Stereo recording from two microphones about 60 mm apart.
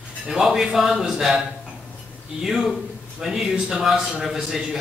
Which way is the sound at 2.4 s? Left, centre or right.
Centre.